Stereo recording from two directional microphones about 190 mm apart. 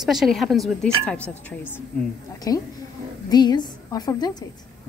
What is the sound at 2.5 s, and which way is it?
A woman's voice, 15° left (ahead or behind).